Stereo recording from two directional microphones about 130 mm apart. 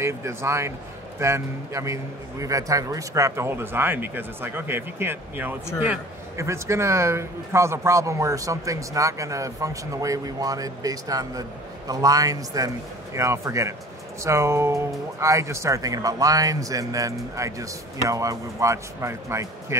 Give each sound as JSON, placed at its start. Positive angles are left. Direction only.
{"t": 0.0, "sound": "speech", "side_deg": -20}